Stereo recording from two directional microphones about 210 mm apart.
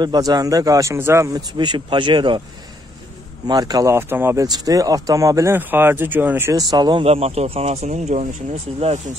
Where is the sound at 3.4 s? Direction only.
20° right (ahead or behind).